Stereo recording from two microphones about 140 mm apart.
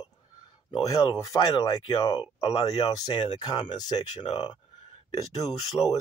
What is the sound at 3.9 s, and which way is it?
Speech, 50° left (ahead or behind).